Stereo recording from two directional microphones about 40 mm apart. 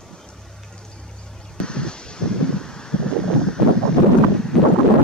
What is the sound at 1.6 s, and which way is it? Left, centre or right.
Wind, left.